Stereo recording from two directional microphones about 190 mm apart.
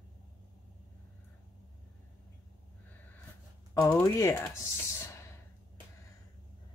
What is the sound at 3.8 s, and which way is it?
Speech, 15° left (ahead or behind).